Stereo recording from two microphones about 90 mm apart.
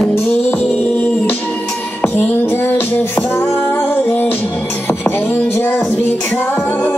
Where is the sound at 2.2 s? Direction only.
20° left (ahead or behind).